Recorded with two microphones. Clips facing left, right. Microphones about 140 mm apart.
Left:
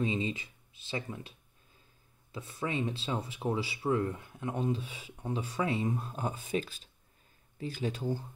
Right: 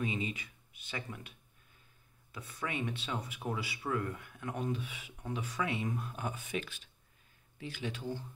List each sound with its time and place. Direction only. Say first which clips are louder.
0.0 s speech: left 4 dB; 30° left (ahead or behind)
2.3 s speech: left 4 dB; 25° left (ahead or behind)